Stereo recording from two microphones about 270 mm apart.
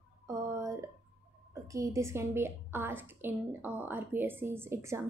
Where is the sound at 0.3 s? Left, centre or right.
Centre.